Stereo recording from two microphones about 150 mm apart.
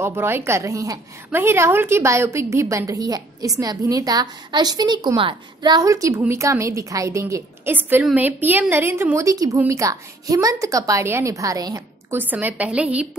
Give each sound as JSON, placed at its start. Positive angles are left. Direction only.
{"t": 0.0, "sound": "a woman's voice", "side_deg": -15}
{"t": 12.2, "sound": "a woman's voice", "side_deg": -10}